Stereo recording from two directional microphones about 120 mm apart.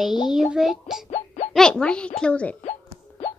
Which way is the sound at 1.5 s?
5° left (ahead or behind).